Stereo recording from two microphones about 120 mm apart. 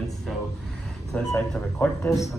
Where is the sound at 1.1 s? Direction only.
10° left (ahead or behind).